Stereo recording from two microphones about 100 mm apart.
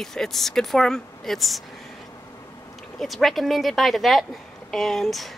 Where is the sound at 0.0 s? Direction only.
5° left (ahead or behind).